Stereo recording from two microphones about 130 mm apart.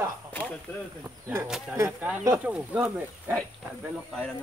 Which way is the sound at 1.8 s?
15° right (ahead or behind).